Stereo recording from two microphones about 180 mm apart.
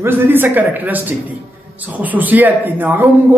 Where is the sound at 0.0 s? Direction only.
10° right (ahead or behind).